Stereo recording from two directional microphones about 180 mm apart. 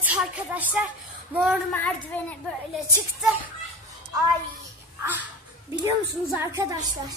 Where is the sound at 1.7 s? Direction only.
10° left (ahead or behind).